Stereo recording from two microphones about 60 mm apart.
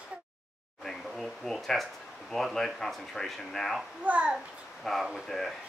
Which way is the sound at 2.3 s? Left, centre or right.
Centre.